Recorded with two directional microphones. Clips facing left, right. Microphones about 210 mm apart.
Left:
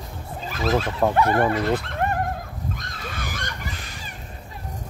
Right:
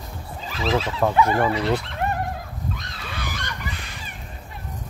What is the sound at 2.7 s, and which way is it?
Goose, 45° left (ahead or behind).